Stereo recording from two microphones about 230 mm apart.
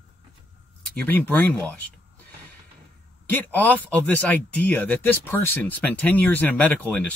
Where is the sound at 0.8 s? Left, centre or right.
Centre.